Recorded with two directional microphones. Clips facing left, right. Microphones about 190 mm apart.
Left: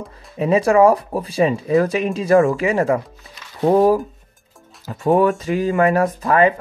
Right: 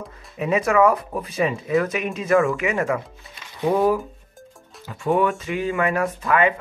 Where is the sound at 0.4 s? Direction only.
30° left (ahead or behind).